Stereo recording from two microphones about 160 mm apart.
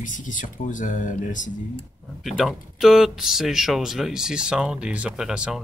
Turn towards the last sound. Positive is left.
turn(degrees=-5)  # may be behind; listen again after turning